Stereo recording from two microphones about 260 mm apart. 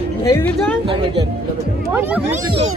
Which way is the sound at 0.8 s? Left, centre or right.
Centre.